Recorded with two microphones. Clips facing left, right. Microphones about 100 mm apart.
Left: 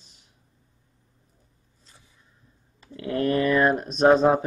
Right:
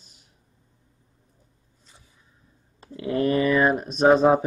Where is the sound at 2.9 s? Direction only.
10° right (ahead or behind).